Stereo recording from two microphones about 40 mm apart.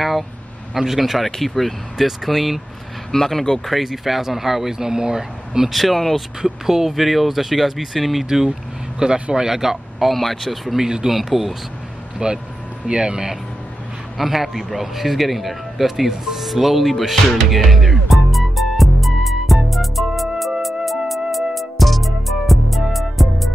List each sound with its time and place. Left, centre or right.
0.7 s speech: centre
3.1 s speech: centre
3.7 s speech: centre
5.7 s speech: centre
6.4 s speech: centre
9.0 s speech: centre
10.8 s speech: centre
11.1 s speech: centre
12.2 s speech: centre
14.1 s a man's voice: centre
20.8 s music: centre